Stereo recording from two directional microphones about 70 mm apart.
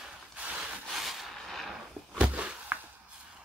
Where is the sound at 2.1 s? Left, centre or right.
Centre.